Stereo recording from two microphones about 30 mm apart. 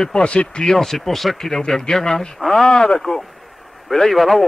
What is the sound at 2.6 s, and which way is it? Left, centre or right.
Speech, left.